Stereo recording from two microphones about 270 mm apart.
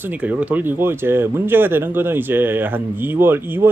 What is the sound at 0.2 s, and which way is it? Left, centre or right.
Speech, centre.